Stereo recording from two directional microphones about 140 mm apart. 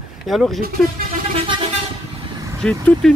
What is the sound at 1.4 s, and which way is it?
Vehicle, 35° right (ahead or behind).